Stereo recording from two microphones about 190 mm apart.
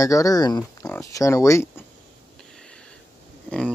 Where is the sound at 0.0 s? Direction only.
20° left (ahead or behind).